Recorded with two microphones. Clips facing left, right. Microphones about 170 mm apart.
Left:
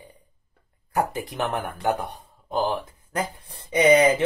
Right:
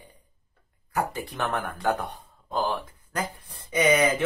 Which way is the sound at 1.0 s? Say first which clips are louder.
Left 3 dB; 15° left (ahead or behind).